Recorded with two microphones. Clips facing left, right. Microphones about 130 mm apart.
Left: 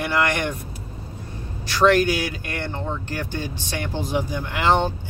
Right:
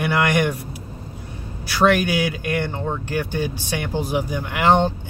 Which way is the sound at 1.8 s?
15° right (ahead or behind).